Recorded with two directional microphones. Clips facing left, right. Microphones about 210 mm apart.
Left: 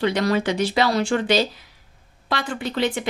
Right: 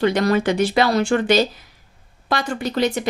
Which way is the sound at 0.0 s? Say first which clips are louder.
Right 3 dB; 50° right (ahead or behind).